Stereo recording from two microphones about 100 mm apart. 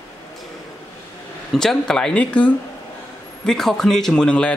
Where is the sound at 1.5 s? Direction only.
5° left (ahead or behind).